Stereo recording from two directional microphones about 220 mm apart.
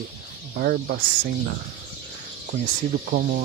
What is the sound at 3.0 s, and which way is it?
Speech, 50° right (ahead or behind).